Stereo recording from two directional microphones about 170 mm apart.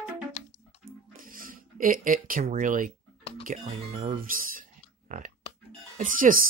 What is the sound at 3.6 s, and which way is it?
Speech, 35° right (ahead or behind).